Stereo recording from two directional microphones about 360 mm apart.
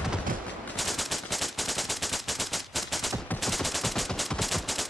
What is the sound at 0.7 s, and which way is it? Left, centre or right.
Machine gun, centre.